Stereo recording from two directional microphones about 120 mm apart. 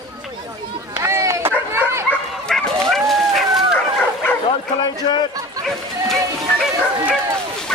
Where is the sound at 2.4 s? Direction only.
Centre (ahead or behind).